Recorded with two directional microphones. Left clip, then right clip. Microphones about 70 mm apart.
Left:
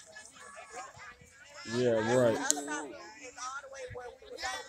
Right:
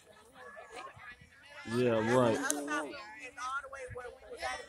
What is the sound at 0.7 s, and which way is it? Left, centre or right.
Dog, right.